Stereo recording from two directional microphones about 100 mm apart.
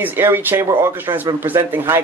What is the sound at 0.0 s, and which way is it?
Speech, 20° right (ahead or behind).